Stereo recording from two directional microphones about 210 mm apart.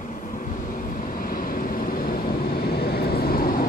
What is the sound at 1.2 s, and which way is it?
Vehicle, 45° left (ahead or behind).